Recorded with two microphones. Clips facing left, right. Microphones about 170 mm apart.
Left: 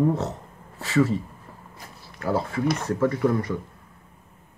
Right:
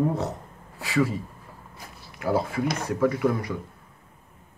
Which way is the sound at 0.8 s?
10° right (ahead or behind).